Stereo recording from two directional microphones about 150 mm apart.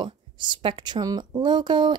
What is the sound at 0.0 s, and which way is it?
Speech, 35° right (ahead or behind).